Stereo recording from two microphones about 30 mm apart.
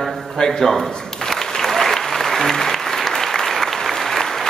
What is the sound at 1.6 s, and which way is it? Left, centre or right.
Applause, centre.